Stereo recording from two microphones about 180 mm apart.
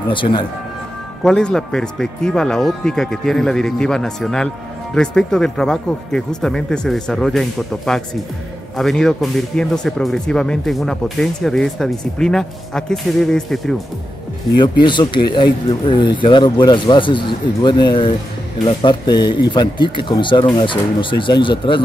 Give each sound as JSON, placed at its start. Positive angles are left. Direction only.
{"t": 0.1, "sound": "speech", "side_deg": 25}
{"t": 1.2, "sound": "speech", "side_deg": 5}
{"t": 14.6, "sound": "speech", "side_deg": 25}